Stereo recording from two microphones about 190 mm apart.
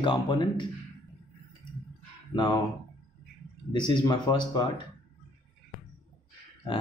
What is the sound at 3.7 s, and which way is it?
Speech, 20° left (ahead or behind).